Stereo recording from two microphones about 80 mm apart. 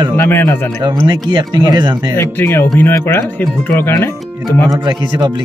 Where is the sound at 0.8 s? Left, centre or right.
Right.